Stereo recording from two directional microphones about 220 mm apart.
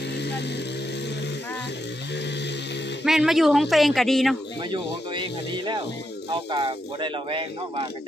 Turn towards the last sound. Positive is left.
turn(degrees=-25)  # may be behind; listen again after turning